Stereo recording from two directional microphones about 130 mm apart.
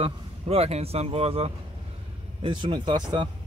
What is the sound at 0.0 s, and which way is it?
Speech, 50° right (ahead or behind).